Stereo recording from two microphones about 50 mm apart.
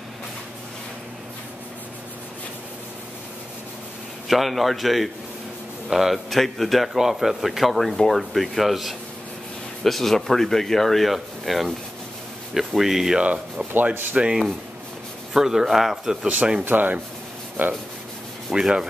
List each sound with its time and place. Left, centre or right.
4.3 s a man's voice: centre
14.1 s speech: centre
15.3 s speech: centre
16.6 s speech: right
18.5 s speech: centre